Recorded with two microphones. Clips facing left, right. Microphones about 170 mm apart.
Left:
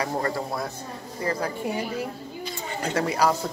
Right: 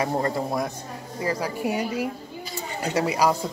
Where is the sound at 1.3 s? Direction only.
10° right (ahead or behind).